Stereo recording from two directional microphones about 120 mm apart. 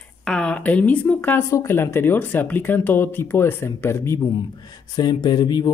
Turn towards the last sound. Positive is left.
turn(degrees=35)  # may be behind; listen again after turning